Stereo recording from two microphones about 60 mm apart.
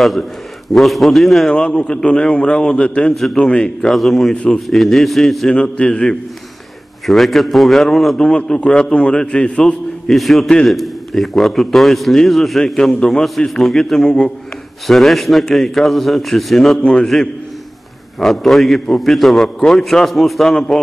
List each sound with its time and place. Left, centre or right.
0.7 s a man's voice: centre
1.5 s a man's voice: centre
3.9 s a man's voice: centre
5.5 s a man's voice: centre
7.1 s a man's voice: centre
8.2 s a man's voice: centre
16.8 s a man's voice: centre
18.2 s a man's voice: centre
20.4 s a man's voice: centre